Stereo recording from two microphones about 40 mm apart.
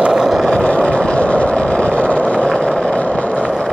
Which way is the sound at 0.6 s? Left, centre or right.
Left.